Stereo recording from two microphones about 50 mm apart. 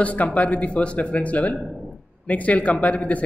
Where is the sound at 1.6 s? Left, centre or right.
Centre.